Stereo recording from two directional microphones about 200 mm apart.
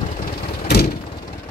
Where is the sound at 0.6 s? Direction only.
50° left (ahead or behind).